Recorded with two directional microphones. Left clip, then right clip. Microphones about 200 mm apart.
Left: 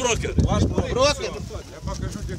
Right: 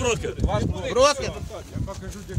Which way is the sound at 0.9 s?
50° right (ahead or behind).